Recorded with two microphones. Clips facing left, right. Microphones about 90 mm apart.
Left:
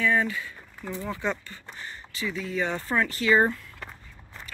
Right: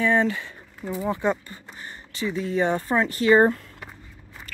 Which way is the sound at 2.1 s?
25° right (ahead or behind).